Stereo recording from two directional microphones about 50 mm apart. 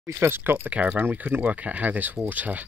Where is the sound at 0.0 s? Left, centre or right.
Right.